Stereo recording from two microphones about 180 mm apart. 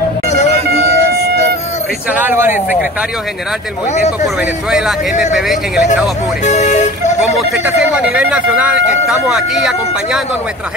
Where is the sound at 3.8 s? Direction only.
40° left (ahead or behind).